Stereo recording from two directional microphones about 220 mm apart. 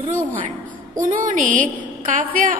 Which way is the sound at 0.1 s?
35° right (ahead or behind).